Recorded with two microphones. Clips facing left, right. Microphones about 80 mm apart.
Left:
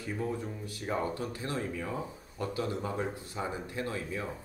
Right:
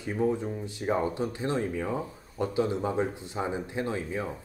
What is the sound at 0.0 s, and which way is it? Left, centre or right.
Speech, right.